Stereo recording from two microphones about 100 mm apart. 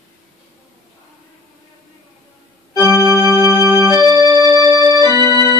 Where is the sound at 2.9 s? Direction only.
35° right (ahead or behind).